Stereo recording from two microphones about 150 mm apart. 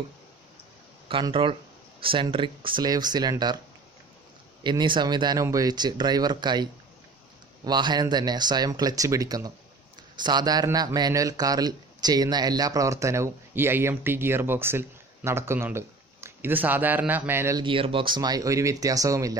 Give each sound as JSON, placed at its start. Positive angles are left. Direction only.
{"t": 1.3, "sound": "speech", "side_deg": -35}
{"t": 4.6, "sound": "a man's voice", "side_deg": -30}
{"t": 17.6, "sound": "speech", "side_deg": -35}